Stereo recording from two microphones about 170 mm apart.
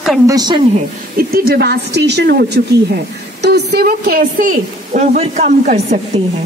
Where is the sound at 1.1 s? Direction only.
60° right (ahead or behind).